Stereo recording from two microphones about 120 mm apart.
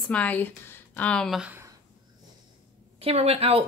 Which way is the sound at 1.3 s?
5° right (ahead or behind).